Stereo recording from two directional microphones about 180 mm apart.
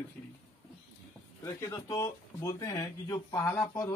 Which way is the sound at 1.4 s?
20° left (ahead or behind).